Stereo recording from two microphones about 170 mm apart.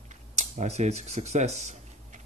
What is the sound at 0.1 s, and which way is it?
Speech, 45° right (ahead or behind).